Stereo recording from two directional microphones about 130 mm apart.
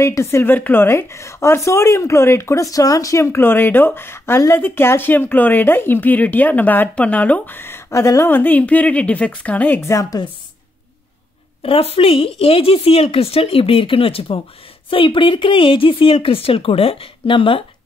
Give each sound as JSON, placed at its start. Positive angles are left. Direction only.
{"t": 0.0, "sound": "a woman's voice", "side_deg": 20}
{"t": 11.6, "sound": "a woman's voice", "side_deg": 50}